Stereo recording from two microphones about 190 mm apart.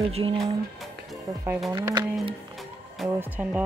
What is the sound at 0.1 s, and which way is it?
Speech, 30° right (ahead or behind).